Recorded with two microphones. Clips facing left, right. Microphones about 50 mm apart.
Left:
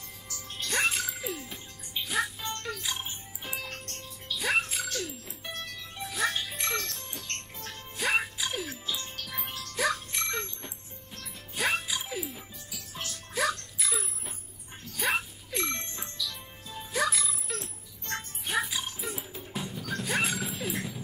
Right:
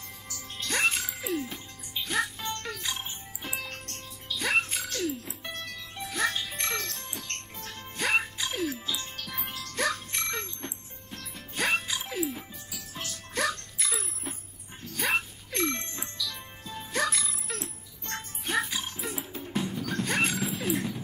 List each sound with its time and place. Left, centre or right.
0.7 s music: centre
5.9 s music: centre
9.8 s music: centre
13.3 s music: centre
17.5 s music: centre
18.4 s music: centre
20.0 s music: centre